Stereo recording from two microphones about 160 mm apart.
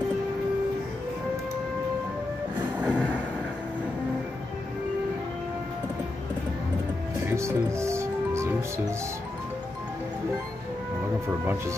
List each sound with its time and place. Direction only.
2.8 s vehicle: 5° right (ahead or behind)
7.2 s music: 15° right (ahead or behind)